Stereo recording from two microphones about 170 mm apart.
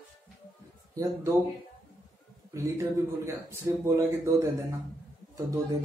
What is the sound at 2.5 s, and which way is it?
A man's voice, 15° right (ahead or behind).